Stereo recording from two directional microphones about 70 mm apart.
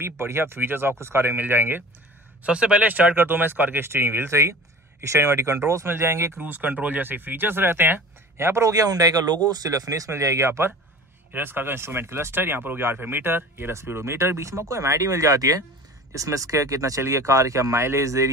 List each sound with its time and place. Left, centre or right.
0.0 s speech: right
2.4 s speech: centre; by 6.4 s right
6.4 s speech: right
8.6 s speech: right
11.3 s speech: right